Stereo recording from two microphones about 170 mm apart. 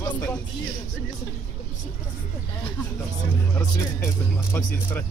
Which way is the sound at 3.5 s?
15° left (ahead or behind).